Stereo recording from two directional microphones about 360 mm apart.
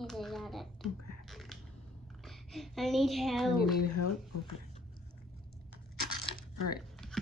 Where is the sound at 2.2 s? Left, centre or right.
Centre.